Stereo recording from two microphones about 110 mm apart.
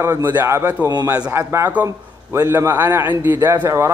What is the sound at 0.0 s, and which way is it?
A man's voice, 25° right (ahead or behind).